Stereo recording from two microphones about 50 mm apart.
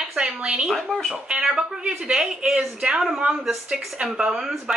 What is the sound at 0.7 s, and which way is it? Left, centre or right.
Speech, centre.